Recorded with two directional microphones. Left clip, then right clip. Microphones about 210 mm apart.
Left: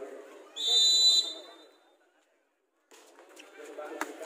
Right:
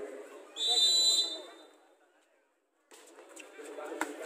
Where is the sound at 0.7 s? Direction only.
20° right (ahead or behind).